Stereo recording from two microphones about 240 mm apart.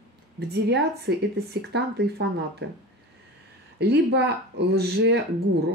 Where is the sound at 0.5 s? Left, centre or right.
Right.